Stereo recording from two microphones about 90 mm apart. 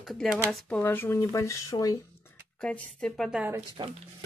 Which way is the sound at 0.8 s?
25° left (ahead or behind).